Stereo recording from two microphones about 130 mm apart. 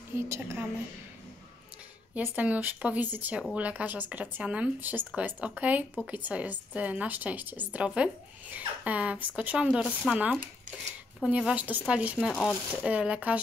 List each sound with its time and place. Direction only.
0.1 s a woman's voice: 20° right (ahead or behind)
2.1 s speech: 10° right (ahead or behind)
12.3 s speech: 5° left (ahead or behind)
12.7 s speech: 10° right (ahead or behind)